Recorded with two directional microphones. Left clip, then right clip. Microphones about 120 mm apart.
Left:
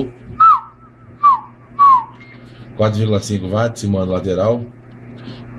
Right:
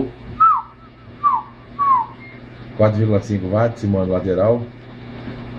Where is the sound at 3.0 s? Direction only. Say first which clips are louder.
Even; 50° left (ahead or behind).